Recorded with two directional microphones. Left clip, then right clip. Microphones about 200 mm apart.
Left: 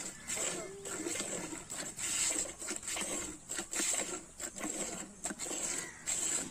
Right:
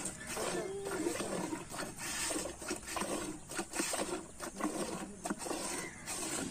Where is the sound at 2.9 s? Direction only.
15° left (ahead or behind).